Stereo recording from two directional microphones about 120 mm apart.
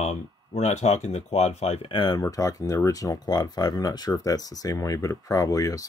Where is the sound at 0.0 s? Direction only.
70° left (ahead or behind).